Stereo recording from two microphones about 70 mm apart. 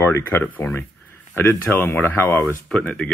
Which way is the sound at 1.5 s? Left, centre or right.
Left.